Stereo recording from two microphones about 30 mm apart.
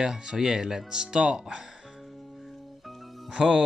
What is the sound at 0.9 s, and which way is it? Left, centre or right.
Speech, right.